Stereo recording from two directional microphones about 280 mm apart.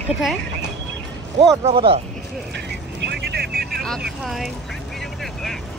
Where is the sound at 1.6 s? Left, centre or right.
Centre.